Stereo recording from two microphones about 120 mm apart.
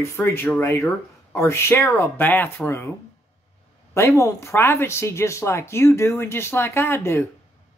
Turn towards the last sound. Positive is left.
turn(degrees=20)  # may be behind; listen again after turning